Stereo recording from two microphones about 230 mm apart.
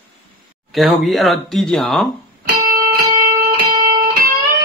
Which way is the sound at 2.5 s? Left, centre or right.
Right.